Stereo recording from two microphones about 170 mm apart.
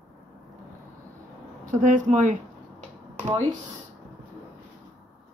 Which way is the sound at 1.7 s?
50° right (ahead or behind).